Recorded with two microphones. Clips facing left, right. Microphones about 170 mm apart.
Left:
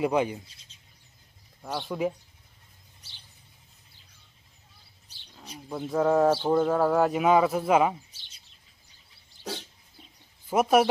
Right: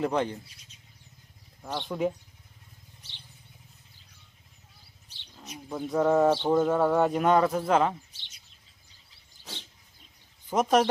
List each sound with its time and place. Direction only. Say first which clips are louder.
0.0 s speech: left 2 dB; 10° left (ahead or behind)
1.6 s speech: even; 5° left (ahead or behind)
5.0 s roaring cats: right 1 dB; 35° left (ahead or behind)
5.7 s speech: even; centre (ahead or behind)
8.1 s chirp: right 1 dB; 40° left (ahead or behind)
10.5 s speech: left 2 dB; 10° left (ahead or behind)